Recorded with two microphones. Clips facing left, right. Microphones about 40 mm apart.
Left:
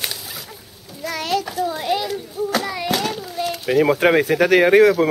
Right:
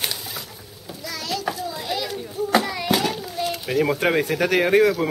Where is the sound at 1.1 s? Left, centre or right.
Left.